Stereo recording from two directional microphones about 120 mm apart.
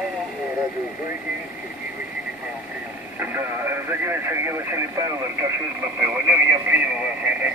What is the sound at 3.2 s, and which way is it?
Speech, 20° right (ahead or behind).